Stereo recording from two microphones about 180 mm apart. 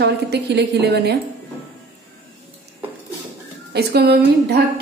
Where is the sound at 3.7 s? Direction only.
60° right (ahead or behind).